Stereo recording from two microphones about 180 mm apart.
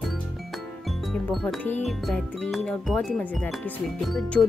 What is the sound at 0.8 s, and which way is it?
Speech, centre (ahead or behind).